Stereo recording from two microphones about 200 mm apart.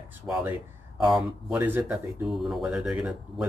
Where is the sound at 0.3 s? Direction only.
10° right (ahead or behind).